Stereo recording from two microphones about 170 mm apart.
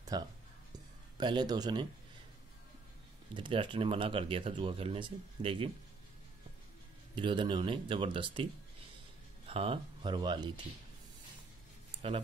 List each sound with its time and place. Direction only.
0.1 s speech: 25° right (ahead or behind)
3.3 s speech: 30° right (ahead or behind)
7.2 s speech: 30° right (ahead or behind)
9.5 s speech: 35° right (ahead or behind)